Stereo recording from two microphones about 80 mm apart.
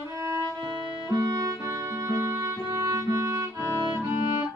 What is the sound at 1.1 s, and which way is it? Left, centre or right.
Music, right.